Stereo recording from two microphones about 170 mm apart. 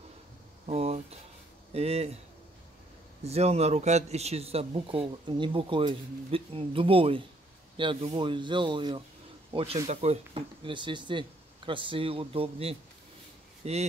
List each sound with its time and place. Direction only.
0.7 s a man's voice: 35° right (ahead or behind)
3.3 s a man's voice: 40° right (ahead or behind)